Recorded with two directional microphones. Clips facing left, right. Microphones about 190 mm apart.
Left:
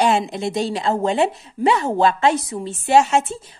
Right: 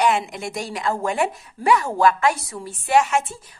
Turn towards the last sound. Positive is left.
turn(degrees=25)  # may be behind; listen again after turning